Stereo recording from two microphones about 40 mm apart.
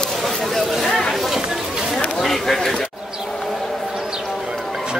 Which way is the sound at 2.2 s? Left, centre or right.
Centre.